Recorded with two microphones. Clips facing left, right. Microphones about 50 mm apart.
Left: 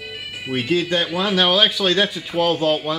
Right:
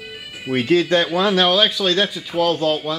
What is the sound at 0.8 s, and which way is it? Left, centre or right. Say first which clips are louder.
Speech: right 4 dB; centre.